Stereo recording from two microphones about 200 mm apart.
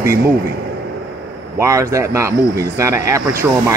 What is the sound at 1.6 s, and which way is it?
Speech, 15° right (ahead or behind).